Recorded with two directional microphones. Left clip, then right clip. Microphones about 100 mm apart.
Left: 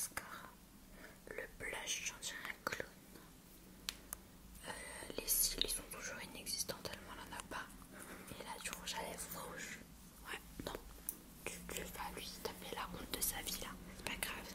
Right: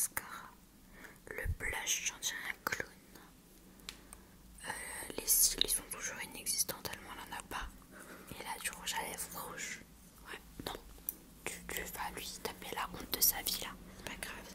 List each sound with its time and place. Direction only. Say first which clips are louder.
0.0 s whispering: right 5 dB; 40° right (ahead or behind)
4.6 s whispering: right 5 dB; 35° right (ahead or behind)
7.9 s dog: right 1 dB; centre (ahead or behind)
8.4 s whispering: right 6 dB; 35° right (ahead or behind)
10.3 s whispering: even; centre (ahead or behind)
11.4 s whispering: right 5 dB; 30° right (ahead or behind)
14.0 s whispering: left 1 dB; 10° left (ahead or behind)